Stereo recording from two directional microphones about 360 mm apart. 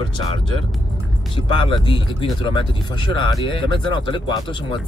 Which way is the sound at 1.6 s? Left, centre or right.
Centre.